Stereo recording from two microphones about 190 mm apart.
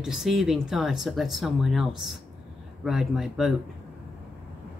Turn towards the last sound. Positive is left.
turn(degrees=0)  # may be behind; listen again after turning